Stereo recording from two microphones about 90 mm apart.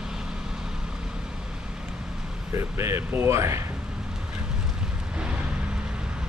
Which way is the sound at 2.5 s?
30° right (ahead or behind).